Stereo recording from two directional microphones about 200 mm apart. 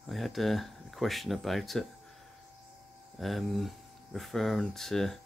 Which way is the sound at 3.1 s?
Centre (ahead or behind).